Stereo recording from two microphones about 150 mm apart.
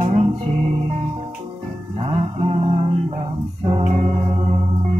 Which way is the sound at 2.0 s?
40° right (ahead or behind).